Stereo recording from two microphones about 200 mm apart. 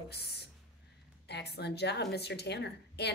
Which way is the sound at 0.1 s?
55° left (ahead or behind).